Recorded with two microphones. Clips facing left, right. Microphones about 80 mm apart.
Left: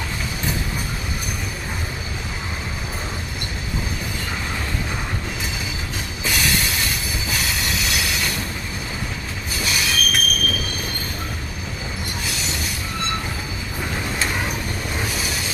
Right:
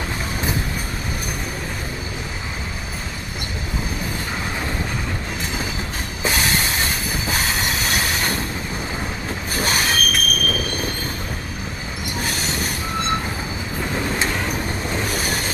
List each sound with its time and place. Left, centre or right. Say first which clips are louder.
6.2 s train: right 2 dB; right
9.6 s train: right 3 dB; right
12.2 s train wheels squealing: right 5 dB; right
15.0 s railroad car: right 3 dB; right